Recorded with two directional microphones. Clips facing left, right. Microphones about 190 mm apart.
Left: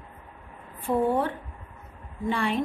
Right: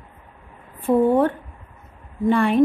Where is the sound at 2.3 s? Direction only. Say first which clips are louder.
Right 10 dB; 50° right (ahead or behind).